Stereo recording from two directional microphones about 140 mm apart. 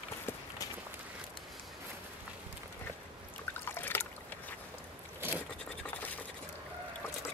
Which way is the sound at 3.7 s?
15° left (ahead or behind).